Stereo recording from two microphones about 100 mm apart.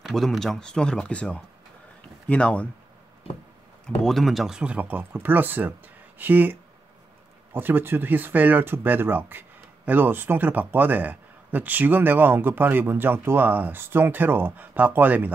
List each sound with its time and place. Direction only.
0.0 s speech: centre (ahead or behind)
4.0 s speech: centre (ahead or behind); by 15.3 s 15° right (ahead or behind)